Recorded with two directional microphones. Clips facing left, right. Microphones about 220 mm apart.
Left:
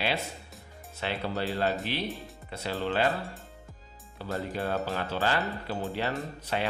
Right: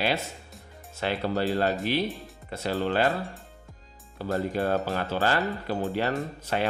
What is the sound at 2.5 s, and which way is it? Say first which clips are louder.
Speech: right 4 dB; 45° right (ahead or behind).